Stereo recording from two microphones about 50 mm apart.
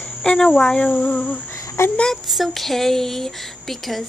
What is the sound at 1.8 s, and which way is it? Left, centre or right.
Child singing, left.